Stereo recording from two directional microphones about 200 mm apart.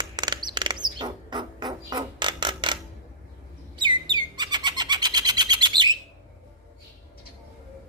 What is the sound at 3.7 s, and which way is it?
Bird, 20° right (ahead or behind).